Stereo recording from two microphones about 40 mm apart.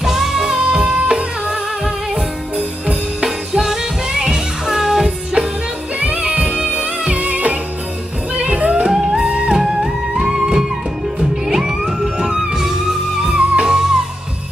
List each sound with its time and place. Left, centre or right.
0.0 s music: centre
0.6 s music: right
3.3 s music: centre
5.9 s music: right
8.4 s music: right
8.9 s music: centre